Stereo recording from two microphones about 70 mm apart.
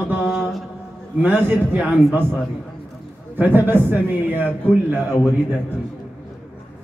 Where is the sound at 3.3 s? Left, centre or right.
Right.